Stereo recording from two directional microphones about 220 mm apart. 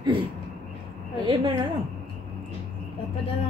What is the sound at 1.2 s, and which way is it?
Speech, 20° right (ahead or behind).